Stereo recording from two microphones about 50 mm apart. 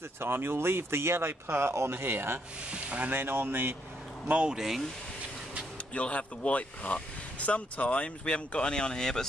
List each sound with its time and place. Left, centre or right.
0.2 s speech: right
2.7 s speech: right
3.1 s speech: right
4.5 s speech: centre
5.9 s speech: left; by 9.3 s centre